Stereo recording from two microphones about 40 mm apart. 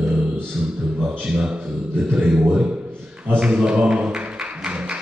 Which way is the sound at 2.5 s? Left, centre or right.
Right.